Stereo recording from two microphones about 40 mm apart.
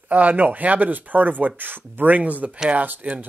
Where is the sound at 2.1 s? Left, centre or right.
Right.